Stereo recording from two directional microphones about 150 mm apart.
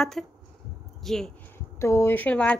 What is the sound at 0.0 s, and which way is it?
Speech, 5° left (ahead or behind).